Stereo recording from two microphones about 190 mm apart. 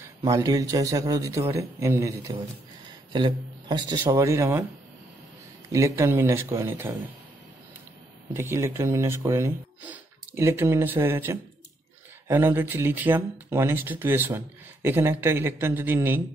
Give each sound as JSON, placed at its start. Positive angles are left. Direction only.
{"t": 0.2, "sound": "speech", "side_deg": -20}
{"t": 5.7, "sound": "speech", "side_deg": -15}
{"t": 8.3, "sound": "speech", "side_deg": -10}